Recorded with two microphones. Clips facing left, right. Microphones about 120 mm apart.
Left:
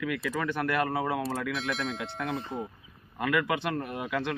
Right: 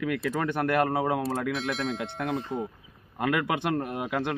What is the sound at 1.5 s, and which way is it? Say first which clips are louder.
Speech: right 2 dB; centre (ahead or behind).